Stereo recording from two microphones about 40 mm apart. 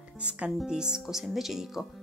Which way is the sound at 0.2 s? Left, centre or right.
Right.